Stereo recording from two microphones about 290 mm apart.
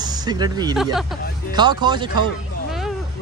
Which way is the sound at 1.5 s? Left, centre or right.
Centre.